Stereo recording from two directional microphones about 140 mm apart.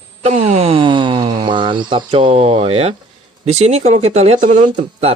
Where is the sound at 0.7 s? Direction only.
35° right (ahead or behind).